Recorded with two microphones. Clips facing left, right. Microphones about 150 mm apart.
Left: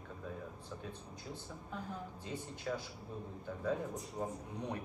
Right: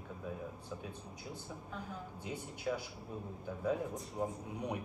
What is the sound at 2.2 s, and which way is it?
Speech, 10° right (ahead or behind).